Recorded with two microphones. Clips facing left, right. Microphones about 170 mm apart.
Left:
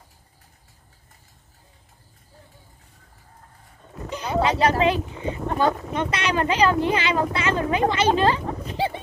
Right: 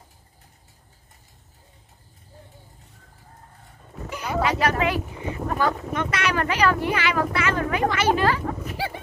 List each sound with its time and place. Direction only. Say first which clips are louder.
4.2 s speech: left 2 dB; 25° left (ahead or behind)